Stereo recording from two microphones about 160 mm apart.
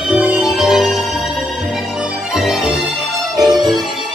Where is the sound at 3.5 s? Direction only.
25° right (ahead or behind).